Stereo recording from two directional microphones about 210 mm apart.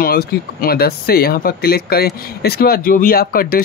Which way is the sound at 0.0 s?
45° left (ahead or behind).